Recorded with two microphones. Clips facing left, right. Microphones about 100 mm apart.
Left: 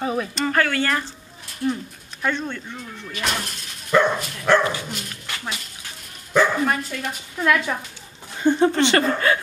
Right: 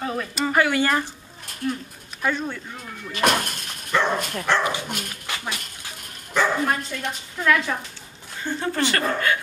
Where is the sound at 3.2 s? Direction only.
55° right (ahead or behind).